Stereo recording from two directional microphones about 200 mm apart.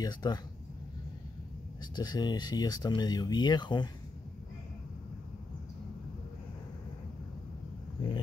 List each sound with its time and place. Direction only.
0.0 s speech: 20° left (ahead or behind)
2.0 s speech: 20° left (ahead or behind)